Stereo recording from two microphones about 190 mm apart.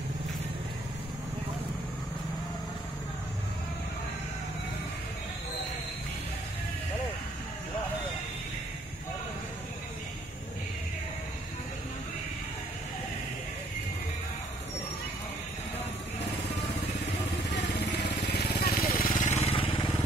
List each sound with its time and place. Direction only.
17.6 s vehicle: 60° left (ahead or behind); by 19.9 s 25° left (ahead or behind)